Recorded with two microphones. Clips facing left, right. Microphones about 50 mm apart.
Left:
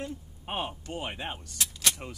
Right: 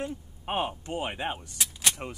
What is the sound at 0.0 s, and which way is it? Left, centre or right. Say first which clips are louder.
Speech: right 3 dB; right.